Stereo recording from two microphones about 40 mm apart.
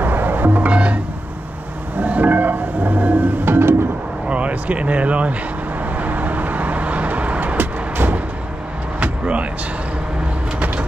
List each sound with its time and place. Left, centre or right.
0.0 s music: right
0.7 s music: right
2.0 s music: right
3.4 s music: right
4.3 s speech: right
5.8 s vehicle: right
7.5 s vehicle: right
9.0 s vehicle: right